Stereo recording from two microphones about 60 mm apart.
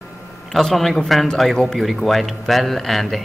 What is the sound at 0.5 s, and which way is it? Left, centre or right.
Speech, centre.